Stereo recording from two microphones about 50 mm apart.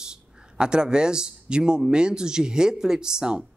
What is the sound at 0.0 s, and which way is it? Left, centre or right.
Speech, centre.